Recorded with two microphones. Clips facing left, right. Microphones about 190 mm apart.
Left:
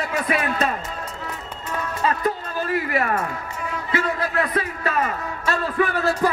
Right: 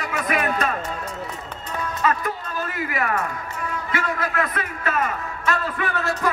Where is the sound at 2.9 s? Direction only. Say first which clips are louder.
Left 2 dB; 30° left (ahead or behind).